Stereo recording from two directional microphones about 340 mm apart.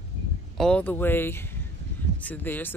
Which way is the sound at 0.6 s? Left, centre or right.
Centre.